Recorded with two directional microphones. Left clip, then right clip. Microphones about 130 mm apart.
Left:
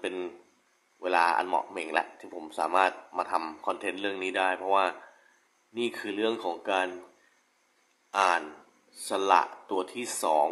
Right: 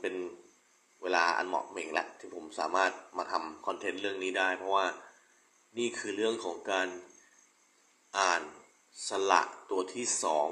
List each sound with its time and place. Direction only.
1.0 s a man's voice: 25° left (ahead or behind)
8.1 s a man's voice: 20° left (ahead or behind)